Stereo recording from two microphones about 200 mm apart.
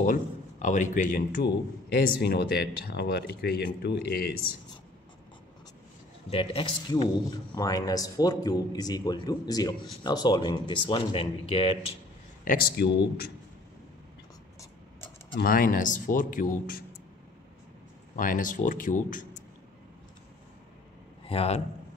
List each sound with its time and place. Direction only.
0.0 s speech: 40° left (ahead or behind)
6.3 s a man's voice: 25° left (ahead or behind)
12.4 s speech: 55° left (ahead or behind)
15.3 s speech: 45° left (ahead or behind)
18.1 s speech: 40° left (ahead or behind)
21.3 s speech: 30° left (ahead or behind)